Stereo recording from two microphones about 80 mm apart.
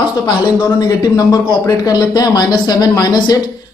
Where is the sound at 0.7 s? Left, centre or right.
Left.